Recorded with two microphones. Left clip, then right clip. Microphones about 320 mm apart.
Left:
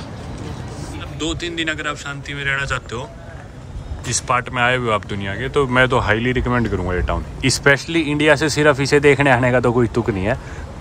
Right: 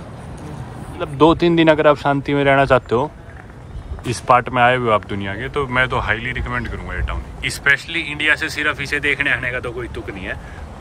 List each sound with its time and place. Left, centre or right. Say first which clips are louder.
1.0 s speech: right 12 dB; centre